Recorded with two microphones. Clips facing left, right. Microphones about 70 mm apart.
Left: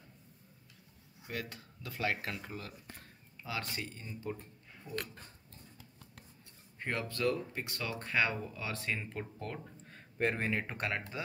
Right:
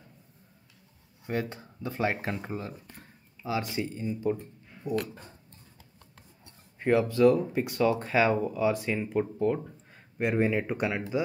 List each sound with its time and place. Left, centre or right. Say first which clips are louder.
1.2 s speech: right 10 dB; right
3.4 s speech: right 9 dB; centre
6.8 s speech: right 13 dB; centre